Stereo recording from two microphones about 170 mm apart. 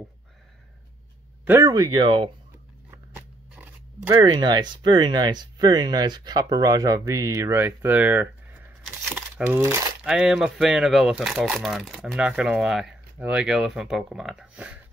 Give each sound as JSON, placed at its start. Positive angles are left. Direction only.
{"t": 1.4, "sound": "speech", "side_deg": -15}
{"t": 3.2, "sound": "crunch", "side_deg": -10}
{"t": 4.1, "sound": "speech", "side_deg": -25}
{"t": 10.0, "sound": "speech", "side_deg": -5}